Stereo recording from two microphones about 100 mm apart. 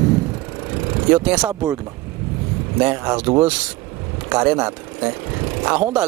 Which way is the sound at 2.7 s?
15° right (ahead or behind).